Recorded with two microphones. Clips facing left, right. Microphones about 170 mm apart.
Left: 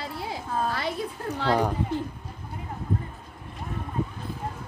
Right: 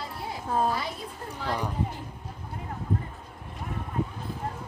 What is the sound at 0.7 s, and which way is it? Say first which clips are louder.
Speech: left 2 dB; 75° left (ahead or behind).